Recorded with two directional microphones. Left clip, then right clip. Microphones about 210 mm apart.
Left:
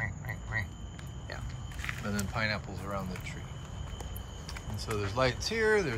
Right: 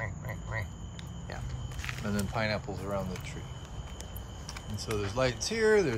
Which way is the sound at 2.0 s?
20° right (ahead or behind).